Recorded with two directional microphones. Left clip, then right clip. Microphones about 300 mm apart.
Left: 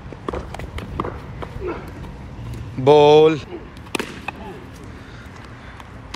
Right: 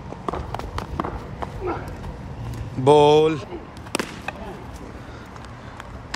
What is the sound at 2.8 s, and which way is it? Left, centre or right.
Chop, centre.